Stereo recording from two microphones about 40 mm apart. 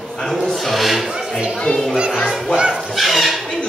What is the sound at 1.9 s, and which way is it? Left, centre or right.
Speech, right.